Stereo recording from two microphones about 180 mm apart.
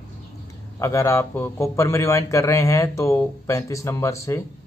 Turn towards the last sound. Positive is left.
turn(degrees=15)  # may be behind; listen again after turning